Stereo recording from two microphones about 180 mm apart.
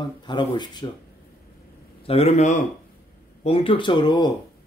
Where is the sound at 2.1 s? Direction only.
35° left (ahead or behind).